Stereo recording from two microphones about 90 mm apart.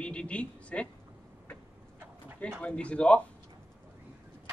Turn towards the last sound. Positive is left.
turn(degrees=10)  # may be behind; listen again after turning